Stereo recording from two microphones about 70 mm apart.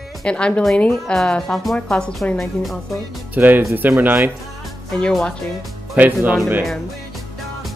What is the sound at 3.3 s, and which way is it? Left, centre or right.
Speech, right.